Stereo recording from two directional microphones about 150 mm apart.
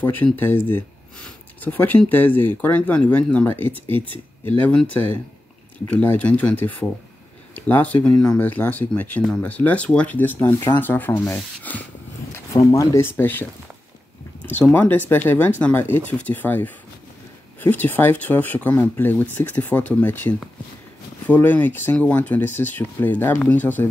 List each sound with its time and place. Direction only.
0.0 s speech: 15° left (ahead or behind)
10.4 s speech: 30° left (ahead or behind)
10.8 s speech: 15° left (ahead or behind)